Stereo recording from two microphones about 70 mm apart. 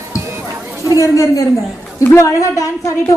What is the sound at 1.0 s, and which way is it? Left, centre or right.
Speech, left.